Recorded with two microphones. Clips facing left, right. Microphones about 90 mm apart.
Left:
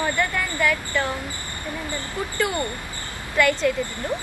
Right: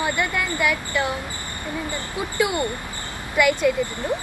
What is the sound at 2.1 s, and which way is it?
A woman's voice, 10° right (ahead or behind).